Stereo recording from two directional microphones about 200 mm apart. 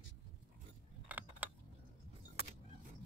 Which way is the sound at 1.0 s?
10° right (ahead or behind).